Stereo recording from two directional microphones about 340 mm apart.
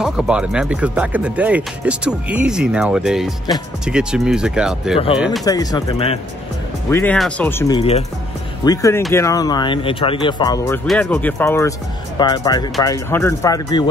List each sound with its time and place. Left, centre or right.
0.0 s speech: centre
5.4 s speech: centre